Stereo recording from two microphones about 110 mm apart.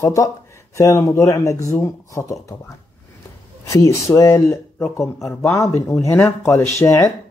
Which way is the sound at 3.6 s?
30° left (ahead or behind).